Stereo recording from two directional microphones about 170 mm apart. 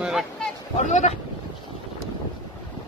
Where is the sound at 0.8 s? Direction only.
45° left (ahead or behind).